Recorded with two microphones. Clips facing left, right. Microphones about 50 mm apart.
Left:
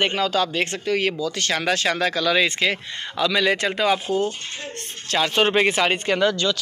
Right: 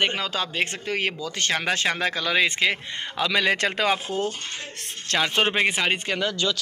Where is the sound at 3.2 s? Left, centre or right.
Right.